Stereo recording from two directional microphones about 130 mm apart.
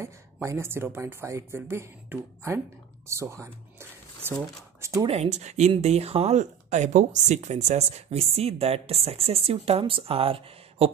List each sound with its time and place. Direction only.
0.0 s speech: 20° right (ahead or behind)
5.0 s speech: 55° right (ahead or behind)